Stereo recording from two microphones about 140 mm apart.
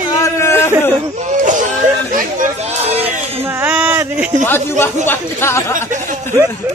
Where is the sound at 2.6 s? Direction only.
50° right (ahead or behind).